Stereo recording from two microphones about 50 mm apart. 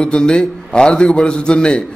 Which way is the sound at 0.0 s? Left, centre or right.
Centre.